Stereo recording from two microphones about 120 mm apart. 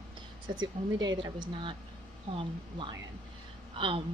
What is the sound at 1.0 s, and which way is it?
Speech, 40° right (ahead or behind).